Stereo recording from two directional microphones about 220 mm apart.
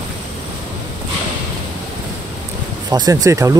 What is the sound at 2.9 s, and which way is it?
Speech, 15° right (ahead or behind).